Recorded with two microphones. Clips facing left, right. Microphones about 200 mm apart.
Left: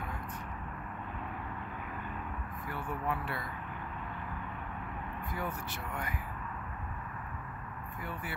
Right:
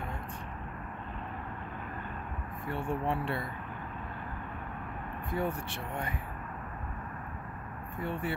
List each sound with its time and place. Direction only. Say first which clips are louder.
2.7 s speech: right 4 dB; 25° right (ahead or behind)
5.3 s speech: right 7 dB; 30° right (ahead or behind)
8.0 s speech: right 8 dB; 25° right (ahead or behind)